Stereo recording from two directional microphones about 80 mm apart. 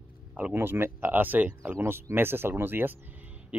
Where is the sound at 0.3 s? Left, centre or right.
Right.